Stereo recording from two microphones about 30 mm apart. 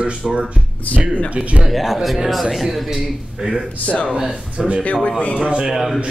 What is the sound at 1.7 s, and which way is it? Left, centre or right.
Speech, centre.